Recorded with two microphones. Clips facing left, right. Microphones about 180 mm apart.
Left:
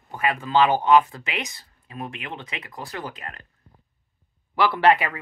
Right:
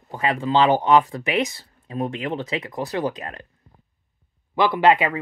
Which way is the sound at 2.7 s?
25° right (ahead or behind).